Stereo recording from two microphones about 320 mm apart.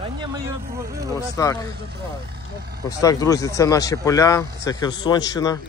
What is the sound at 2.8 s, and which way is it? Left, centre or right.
Speech, centre.